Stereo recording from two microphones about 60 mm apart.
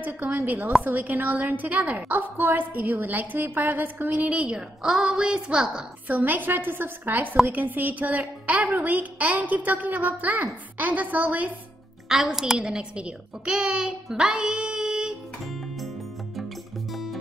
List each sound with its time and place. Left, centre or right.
0.8 s a woman's voice: right; by 5.9 s centre
6.0 s a woman's voice: right
12.1 s a woman's voice: centre
15.4 s music: centre